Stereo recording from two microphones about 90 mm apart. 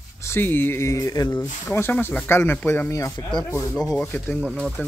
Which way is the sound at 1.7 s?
25° left (ahead or behind).